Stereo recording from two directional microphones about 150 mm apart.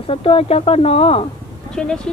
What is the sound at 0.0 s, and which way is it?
Speech, 40° left (ahead or behind).